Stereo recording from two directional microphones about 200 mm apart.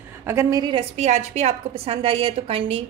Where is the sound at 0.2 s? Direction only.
10° right (ahead or behind).